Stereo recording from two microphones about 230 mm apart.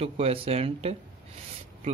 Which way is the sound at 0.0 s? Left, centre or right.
Right.